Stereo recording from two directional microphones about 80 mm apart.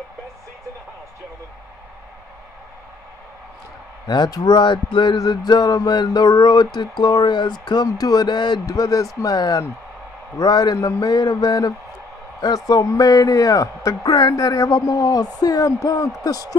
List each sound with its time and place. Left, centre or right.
4.1 s speech: left
5.1 s speech: left
8.6 s a man's voice: left